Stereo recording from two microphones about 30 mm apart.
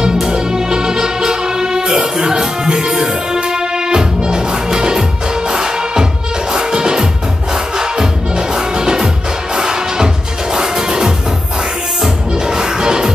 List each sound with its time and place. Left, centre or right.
0.3 s music: right
12.4 s music: right